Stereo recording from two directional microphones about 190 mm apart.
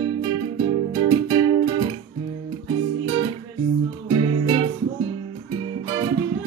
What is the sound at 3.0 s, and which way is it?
Music, 20° right (ahead or behind).